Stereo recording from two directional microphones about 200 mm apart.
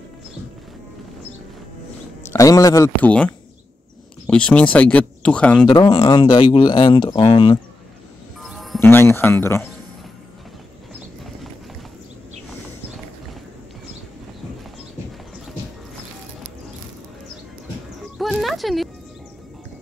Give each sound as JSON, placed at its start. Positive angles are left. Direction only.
{"t": 2.3, "sound": "speech", "side_deg": 15}
{"t": 4.3, "sound": "speech", "side_deg": 5}
{"t": 5.7, "sound": "speech", "side_deg": 25}
{"t": 8.4, "sound": "music", "side_deg": 0}
{"t": 8.7, "sound": "speech", "side_deg": 10}
{"t": 18.1, "sound": "a sound", "side_deg": 0}